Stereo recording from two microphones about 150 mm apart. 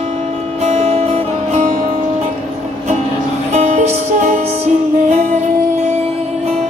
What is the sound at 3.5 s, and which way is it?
Music, 50° right (ahead or behind).